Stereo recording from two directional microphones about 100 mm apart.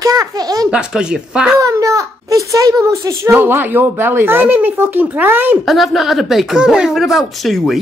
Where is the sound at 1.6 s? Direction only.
35° right (ahead or behind); by 5.5 s 20° right (ahead or behind).